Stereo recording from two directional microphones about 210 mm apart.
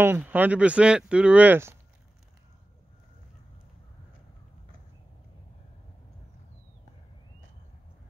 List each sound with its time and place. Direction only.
0.0 s speech: 10° right (ahead or behind)